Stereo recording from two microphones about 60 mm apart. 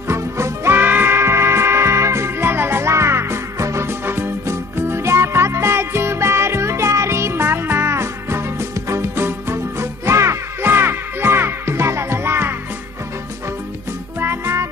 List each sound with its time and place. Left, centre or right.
0.1 s music: right
0.7 s music: right
3.8 s music: right
10.7 s music: right
14.2 s music: right